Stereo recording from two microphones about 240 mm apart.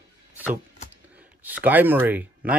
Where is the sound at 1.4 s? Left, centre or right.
Centre.